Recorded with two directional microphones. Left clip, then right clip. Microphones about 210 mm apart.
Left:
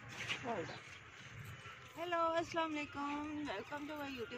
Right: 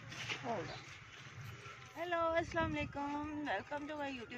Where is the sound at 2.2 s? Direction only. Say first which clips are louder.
Right 1 dB; 15° right (ahead or behind).